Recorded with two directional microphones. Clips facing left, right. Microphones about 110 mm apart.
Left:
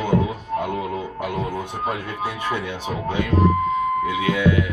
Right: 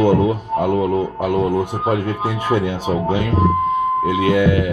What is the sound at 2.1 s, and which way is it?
Speech, 25° right (ahead or behind).